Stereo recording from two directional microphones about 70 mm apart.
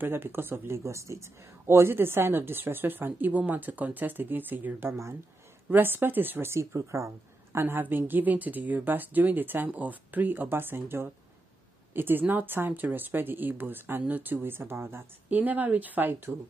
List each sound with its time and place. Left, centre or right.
0.0 s a woman's voice: right
0.8 s a woman's voice: right
7.5 s speech: right